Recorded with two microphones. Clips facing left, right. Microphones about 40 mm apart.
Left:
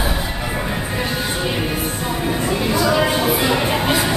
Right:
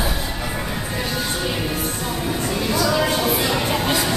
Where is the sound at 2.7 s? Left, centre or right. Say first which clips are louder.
Left 2 dB; centre.